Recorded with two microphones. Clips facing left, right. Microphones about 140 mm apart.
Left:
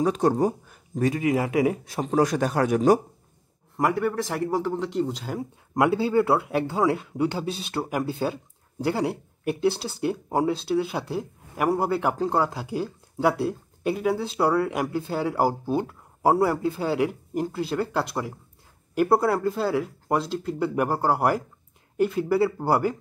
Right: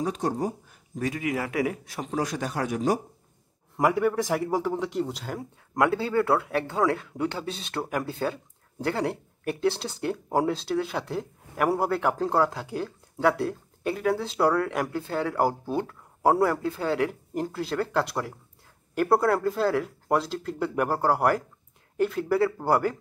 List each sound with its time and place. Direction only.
0.0 s speech: 70° left (ahead or behind)
0.9 s speech: 30° left (ahead or behind)
2.0 s a man's voice: 50° left (ahead or behind)
3.7 s speech: 10° right (ahead or behind); by 22.9 s 5° left (ahead or behind)